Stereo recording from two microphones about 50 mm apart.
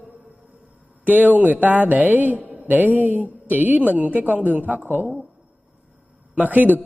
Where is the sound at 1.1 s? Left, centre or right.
Right.